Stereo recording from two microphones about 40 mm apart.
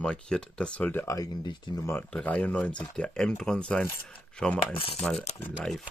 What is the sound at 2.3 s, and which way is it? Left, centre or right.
Speech, left.